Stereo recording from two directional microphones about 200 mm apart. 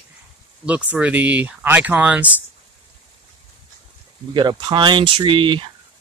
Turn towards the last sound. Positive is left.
turn(degrees=-25)  # may be behind; listen again after turning